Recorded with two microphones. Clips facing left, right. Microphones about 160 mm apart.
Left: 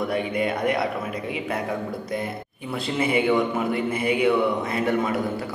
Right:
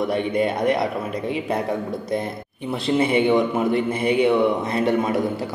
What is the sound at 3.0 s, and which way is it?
A man's voice, 25° right (ahead or behind).